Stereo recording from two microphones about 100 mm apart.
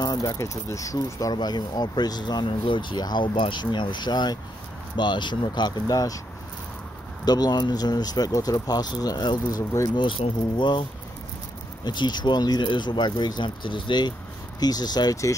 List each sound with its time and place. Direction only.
0.0 s speech: 40° left (ahead or behind)
7.2 s speech: 40° left (ahead or behind)
9.9 s speech: 60° left (ahead or behind); by 15.3 s 35° left (ahead or behind)